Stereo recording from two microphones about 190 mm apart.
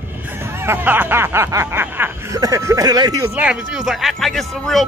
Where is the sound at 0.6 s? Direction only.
10° right (ahead or behind).